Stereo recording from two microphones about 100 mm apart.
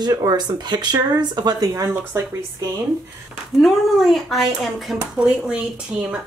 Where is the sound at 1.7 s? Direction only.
25° right (ahead or behind).